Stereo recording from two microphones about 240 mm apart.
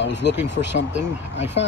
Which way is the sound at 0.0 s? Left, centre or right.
Left.